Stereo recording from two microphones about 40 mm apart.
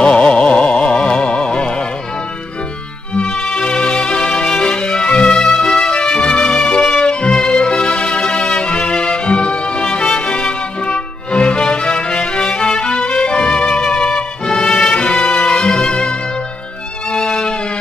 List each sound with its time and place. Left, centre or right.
0.0 s music: left
3.2 s music: left